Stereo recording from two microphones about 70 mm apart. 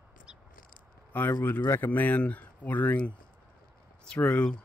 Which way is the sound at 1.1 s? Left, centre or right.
Left.